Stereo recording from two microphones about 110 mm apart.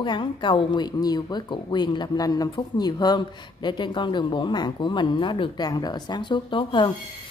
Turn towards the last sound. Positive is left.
turn(degrees=45)  # may be behind; listen again after turning